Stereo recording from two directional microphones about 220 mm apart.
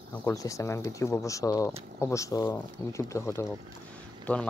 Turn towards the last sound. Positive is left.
turn(degrees=5)  # may be behind; listen again after turning